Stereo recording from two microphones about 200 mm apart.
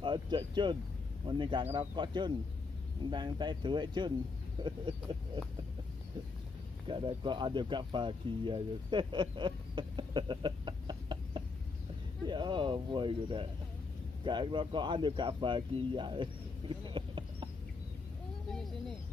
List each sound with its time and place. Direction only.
0.0 s speech: 25° right (ahead or behind)
6.9 s speech: 25° right (ahead or behind)
18.5 s speech: centre (ahead or behind)